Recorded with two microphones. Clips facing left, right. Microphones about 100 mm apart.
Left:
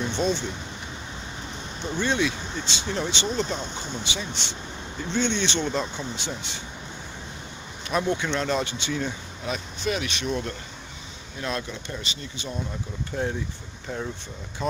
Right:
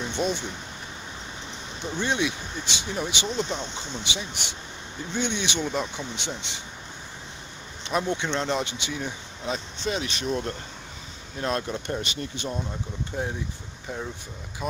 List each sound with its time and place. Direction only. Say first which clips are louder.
0.2 s speech: left 1 dB; 15° right (ahead or behind)
2.0 s speech: left 2 dB; 20° right (ahead or behind)
6.1 s speech: left 1 dB; 20° right (ahead or behind)
7.9 s speech: left 1 dB; 20° right (ahead or behind)
9.5 s speech: left 1 dB; 25° right (ahead or behind); by 12.4 s 55° right (ahead or behind)
13.1 s speech: left 3 dB; 15° right (ahead or behind)